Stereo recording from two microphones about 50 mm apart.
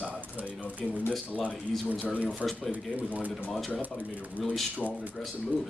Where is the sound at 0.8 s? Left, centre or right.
Centre.